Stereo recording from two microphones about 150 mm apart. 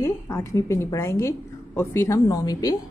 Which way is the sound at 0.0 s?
20° left (ahead or behind).